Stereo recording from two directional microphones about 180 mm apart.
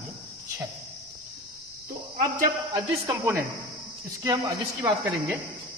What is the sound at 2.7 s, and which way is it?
Speech, 15° right (ahead or behind).